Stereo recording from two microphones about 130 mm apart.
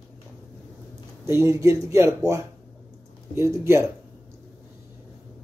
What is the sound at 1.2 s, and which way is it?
Speech, 20° right (ahead or behind).